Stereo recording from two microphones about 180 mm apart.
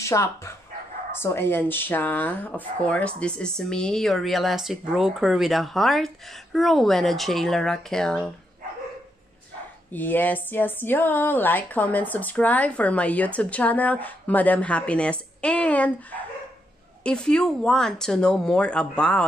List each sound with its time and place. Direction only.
0.0 s a woman's voice: 15° left (ahead or behind)
9.9 s a woman's voice: 10° left (ahead or behind)